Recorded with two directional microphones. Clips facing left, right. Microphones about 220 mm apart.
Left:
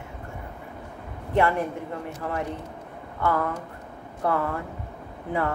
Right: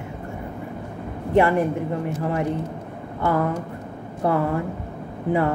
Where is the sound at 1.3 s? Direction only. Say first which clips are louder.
Right 5 dB; 10° right (ahead or behind).